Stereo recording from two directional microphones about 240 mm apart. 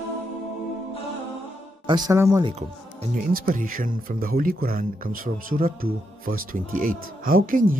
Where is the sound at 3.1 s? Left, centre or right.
Right.